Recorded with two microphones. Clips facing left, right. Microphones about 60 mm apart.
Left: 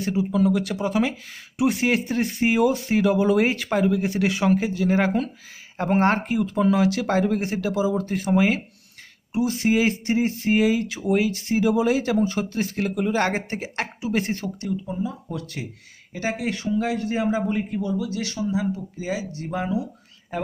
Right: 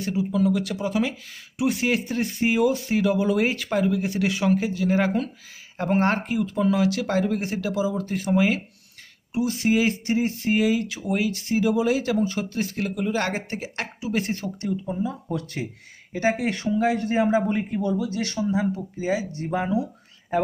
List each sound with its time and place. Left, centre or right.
0.0 s speech: left
4.6 s speech: centre
14.4 s speech: centre
14.9 s speech: right